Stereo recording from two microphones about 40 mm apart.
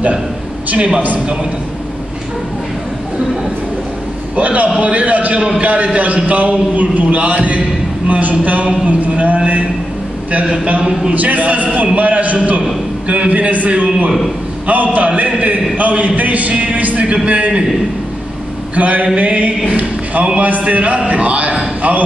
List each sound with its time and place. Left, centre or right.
0.7 s a man's voice: right
4.4 s a man's voice: right
10.4 s a man's voice: right
11.1 s a man's voice: right
14.7 s a man's voice: right
17.0 s a man's voice: right
18.8 s a man's voice: right
19.7 s a sound: right
20.3 s a man's voice: right